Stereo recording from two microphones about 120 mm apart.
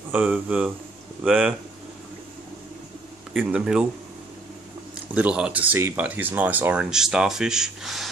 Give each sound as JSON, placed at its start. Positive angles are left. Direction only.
{"t": 0.1, "sound": "speech", "side_deg": -10}
{"t": 3.3, "sound": "speech", "side_deg": -10}
{"t": 5.1, "sound": "speech", "side_deg": -10}